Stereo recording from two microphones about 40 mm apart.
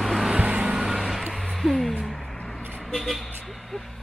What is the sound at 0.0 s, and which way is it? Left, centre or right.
Vehicle, centre.